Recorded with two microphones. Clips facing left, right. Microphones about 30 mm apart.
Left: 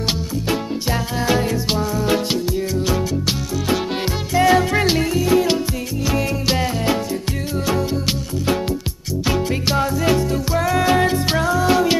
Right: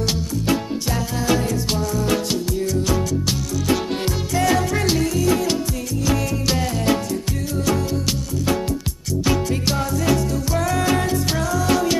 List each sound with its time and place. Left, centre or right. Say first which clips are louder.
0.0 s music: even; left